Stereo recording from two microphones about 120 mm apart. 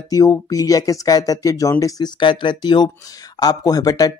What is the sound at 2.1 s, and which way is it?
Speech, 40° left (ahead or behind).